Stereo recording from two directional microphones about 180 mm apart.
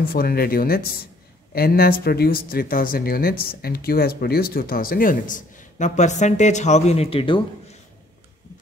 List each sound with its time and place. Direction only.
0.1 s speech: 55° left (ahead or behind); by 7.4 s 30° left (ahead or behind)